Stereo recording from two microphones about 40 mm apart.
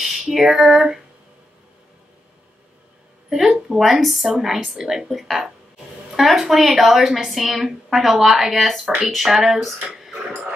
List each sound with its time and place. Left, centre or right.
0.2 s a woman's voice: centre
3.3 s a woman's voice: centre
6.1 s a woman's voice: centre